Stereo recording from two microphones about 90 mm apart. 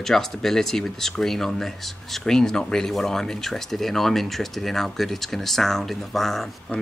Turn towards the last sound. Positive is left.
turn(degrees=0)  # may be behind; listen again after turning